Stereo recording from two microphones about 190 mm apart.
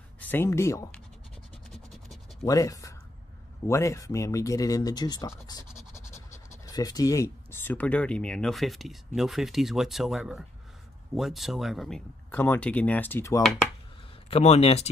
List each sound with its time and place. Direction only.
0.2 s speech: 10° left (ahead or behind)
2.4 s speech: 20° left (ahead or behind)
14.3 s speech: 35° left (ahead or behind)